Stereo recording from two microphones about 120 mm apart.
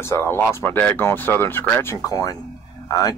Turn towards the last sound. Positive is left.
turn(degrees=30)  # may be behind; listen again after turning